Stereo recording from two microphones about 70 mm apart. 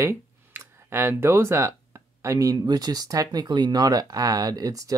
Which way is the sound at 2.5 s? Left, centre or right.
Right.